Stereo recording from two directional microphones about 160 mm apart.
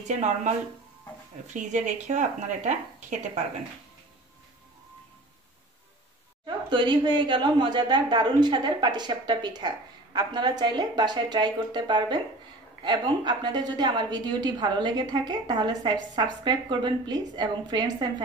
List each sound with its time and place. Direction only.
1.5 s a woman's voice: 50° right (ahead or behind)
6.4 s a woman's voice: 30° right (ahead or behind)